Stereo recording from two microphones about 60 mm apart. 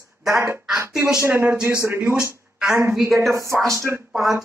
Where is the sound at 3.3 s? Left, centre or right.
Right.